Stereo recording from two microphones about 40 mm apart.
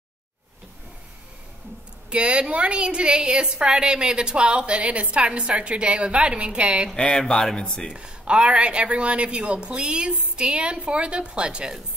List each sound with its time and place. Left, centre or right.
2.0 s a woman's voice: right
7.0 s speech: left
7.9 s a woman's voice: right